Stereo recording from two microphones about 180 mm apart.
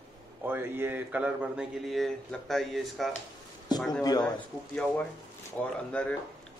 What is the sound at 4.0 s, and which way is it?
Speech, 20° left (ahead or behind).